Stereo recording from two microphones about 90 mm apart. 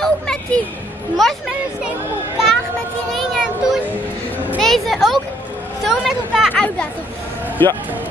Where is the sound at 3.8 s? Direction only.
20° right (ahead or behind).